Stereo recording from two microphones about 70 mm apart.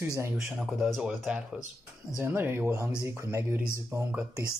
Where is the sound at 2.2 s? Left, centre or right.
Right.